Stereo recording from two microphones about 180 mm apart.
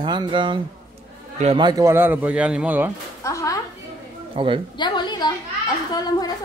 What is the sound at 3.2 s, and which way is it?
Music, 15° left (ahead or behind).